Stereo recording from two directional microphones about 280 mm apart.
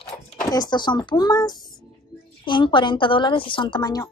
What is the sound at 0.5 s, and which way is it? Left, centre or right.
Speech, centre.